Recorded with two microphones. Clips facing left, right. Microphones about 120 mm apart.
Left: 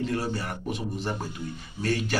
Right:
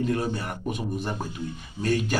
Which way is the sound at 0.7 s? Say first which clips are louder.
Right 4 dB; 50° right (ahead or behind).